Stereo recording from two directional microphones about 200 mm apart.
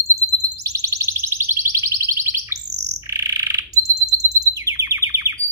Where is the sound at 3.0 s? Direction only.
15° right (ahead or behind).